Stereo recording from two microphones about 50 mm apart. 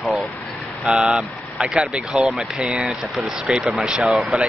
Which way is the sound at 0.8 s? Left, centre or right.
Centre.